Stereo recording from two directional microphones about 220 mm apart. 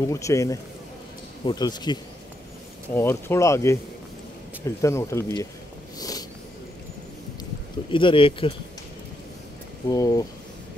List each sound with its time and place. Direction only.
0.0 s speech: 15° left (ahead or behind)
5.9 s a sound: 15° left (ahead or behind)
7.9 s speech: 25° left (ahead or behind)
9.8 s speech: 15° left (ahead or behind)